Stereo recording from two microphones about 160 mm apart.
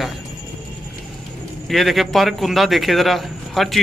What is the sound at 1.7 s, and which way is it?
A man's voice, centre (ahead or behind).